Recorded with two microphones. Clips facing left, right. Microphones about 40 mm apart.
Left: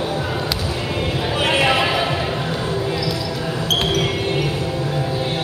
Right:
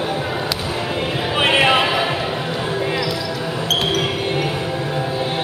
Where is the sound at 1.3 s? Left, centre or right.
Right.